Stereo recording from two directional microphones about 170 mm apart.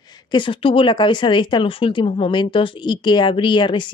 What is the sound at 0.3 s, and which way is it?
Speech, 30° left (ahead or behind).